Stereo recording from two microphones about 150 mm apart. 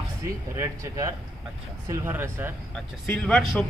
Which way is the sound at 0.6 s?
20° right (ahead or behind).